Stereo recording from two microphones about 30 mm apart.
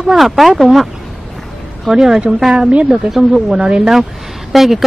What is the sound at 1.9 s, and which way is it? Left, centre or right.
A woman's voice, centre.